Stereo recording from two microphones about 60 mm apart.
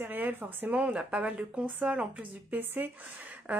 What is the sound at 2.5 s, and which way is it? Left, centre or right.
Speech, right.